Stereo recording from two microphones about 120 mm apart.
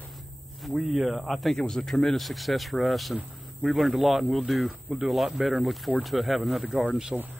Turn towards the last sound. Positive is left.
turn(degrees=-5)  # may be behind; listen again after turning